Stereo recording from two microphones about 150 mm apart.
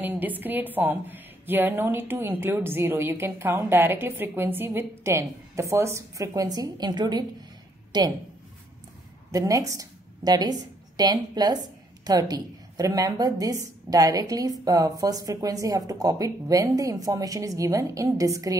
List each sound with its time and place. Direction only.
0.0 s a woman's voice: 10° right (ahead or behind); by 8.1 s 30° right (ahead or behind)
9.3 s a woman's voice: 20° right (ahead or behind)